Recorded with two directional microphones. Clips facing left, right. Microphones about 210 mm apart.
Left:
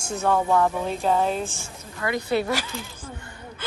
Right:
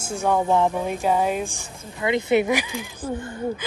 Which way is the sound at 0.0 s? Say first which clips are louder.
Right 1 dB; 10° right (ahead or behind).